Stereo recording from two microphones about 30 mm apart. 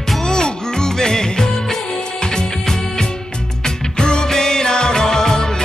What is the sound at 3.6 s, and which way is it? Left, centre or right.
Music, left.